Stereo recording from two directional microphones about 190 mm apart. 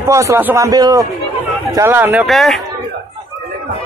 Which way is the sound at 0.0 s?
15° right (ahead or behind).